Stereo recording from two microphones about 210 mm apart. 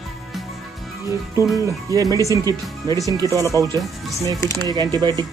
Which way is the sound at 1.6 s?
15° right (ahead or behind).